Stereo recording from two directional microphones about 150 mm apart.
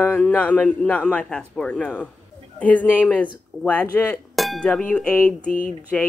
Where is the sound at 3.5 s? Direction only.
20° right (ahead or behind).